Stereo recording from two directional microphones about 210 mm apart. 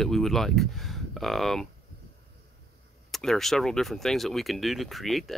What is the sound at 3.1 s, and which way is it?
Speech, centre (ahead or behind).